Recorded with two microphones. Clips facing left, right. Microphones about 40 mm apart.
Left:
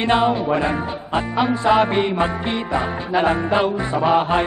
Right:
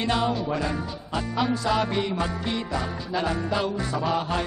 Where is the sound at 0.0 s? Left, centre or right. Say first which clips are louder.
Left 7 dB; left.